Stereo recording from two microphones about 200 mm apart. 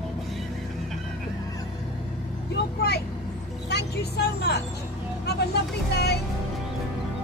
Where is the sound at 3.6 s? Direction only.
55° left (ahead or behind).